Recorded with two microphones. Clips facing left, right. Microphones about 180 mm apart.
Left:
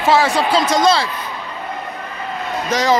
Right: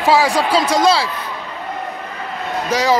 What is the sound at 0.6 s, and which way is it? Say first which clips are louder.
Speech: even; 35° right (ahead or behind).